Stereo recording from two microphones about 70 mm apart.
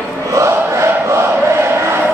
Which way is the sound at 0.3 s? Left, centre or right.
Right.